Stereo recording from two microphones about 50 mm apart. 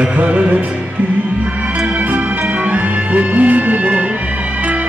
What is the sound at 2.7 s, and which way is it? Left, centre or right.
Music, right.